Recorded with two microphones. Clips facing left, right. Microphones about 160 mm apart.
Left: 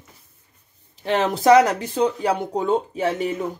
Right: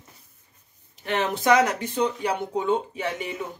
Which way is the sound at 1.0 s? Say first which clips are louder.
Left 5 dB; 35° left (ahead or behind).